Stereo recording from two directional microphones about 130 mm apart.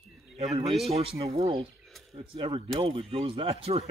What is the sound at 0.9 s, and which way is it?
Speech, 55° right (ahead or behind).